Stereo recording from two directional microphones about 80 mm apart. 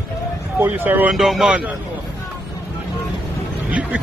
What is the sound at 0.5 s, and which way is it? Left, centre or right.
Speech, right.